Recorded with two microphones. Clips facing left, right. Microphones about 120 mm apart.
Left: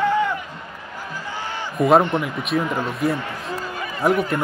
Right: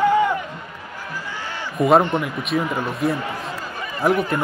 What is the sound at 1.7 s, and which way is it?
Speech, centre (ahead or behind).